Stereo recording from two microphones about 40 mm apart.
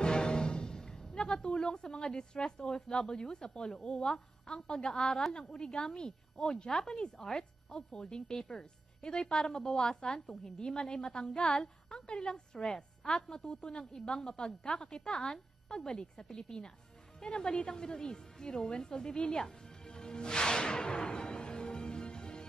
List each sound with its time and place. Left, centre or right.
0.0 s music: centre
1.0 s speech: left
13.9 s a woman's voice: centre
19.1 s music: left